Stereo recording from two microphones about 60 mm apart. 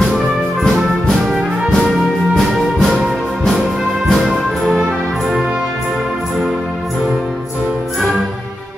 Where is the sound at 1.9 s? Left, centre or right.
Centre.